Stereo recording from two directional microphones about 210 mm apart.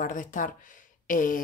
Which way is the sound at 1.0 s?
40° left (ahead or behind).